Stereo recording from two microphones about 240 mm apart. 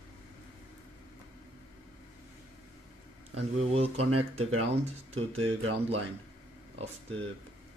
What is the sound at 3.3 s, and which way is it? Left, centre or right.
Speech, right.